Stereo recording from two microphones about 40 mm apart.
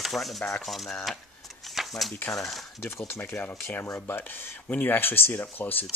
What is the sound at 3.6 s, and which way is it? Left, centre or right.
Speech, left.